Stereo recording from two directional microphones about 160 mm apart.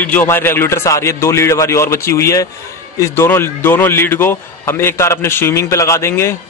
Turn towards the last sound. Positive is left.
turn(degrees=15)  # may be behind; listen again after turning